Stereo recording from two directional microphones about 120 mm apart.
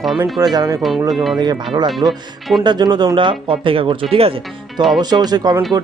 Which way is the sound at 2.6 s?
40° right (ahead or behind).